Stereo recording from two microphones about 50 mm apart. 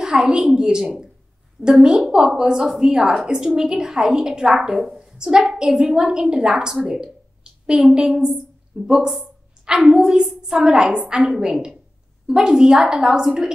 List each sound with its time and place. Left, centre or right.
0.0 s a woman's voice: centre
4.9 s a sound: centre
5.4 s a woman's voice: centre
10.6 s a woman's voice: centre